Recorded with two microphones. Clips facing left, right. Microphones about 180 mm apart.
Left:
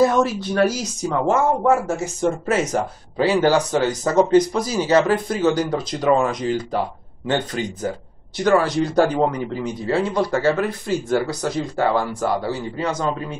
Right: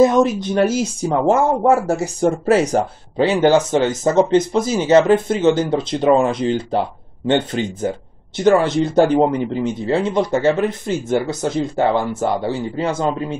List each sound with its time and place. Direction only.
0.0 s speech: 20° right (ahead or behind)